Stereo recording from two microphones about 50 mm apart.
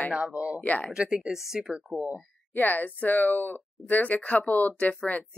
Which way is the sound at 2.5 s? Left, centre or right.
Left.